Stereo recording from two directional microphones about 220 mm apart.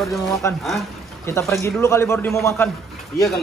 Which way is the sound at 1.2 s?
10° left (ahead or behind).